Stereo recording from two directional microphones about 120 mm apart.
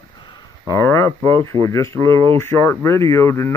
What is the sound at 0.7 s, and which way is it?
Speech, 25° left (ahead or behind).